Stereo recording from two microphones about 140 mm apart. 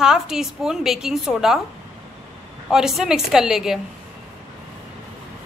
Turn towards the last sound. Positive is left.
turn(degrees=-5)  # may be behind; listen again after turning